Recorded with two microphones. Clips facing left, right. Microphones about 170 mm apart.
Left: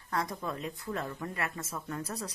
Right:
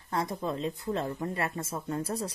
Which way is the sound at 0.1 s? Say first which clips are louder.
Right 3 dB; 25° right (ahead or behind).